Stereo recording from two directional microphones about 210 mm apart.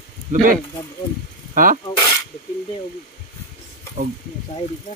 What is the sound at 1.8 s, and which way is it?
Snake, 20° left (ahead or behind).